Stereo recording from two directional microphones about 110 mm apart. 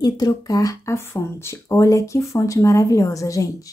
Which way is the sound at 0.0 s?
35° left (ahead or behind).